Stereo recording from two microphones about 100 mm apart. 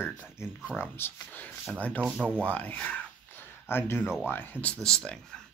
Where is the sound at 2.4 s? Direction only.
15° left (ahead or behind).